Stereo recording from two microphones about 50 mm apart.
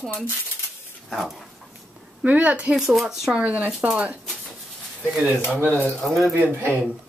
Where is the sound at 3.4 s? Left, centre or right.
Right.